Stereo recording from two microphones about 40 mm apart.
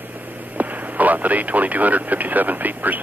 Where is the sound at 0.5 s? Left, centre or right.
Right.